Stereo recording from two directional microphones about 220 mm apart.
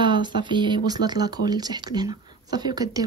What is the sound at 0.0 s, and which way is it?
Speech, 20° right (ahead or behind).